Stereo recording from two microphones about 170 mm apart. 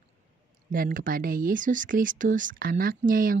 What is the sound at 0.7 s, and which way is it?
Speech, 55° right (ahead or behind).